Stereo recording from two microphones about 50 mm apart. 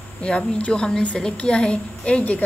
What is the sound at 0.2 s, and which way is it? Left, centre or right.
A woman's voice, left.